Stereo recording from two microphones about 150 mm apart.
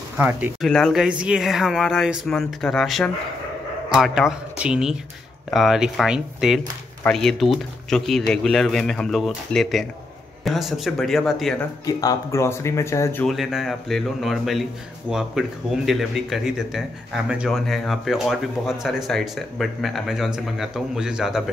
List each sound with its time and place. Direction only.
0.2 s speech: 10° right (ahead or behind)
0.6 s speech: 5° left (ahead or behind)
1.0 s speech: 5° right (ahead or behind)
11.8 s speech: 25° left (ahead or behind)
13.3 s speech: centre (ahead or behind)